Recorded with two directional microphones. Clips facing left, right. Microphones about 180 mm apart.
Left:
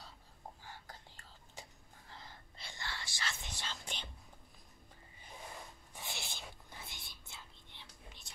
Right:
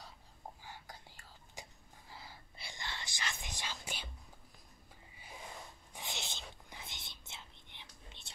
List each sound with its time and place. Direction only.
0.7 s whispering: 10° right (ahead or behind)
5.9 s whispering: 20° right (ahead or behind)